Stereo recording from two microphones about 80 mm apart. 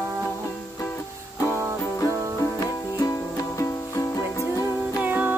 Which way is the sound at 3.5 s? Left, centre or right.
Left.